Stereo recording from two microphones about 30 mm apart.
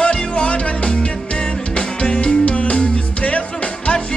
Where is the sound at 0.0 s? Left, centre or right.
Left.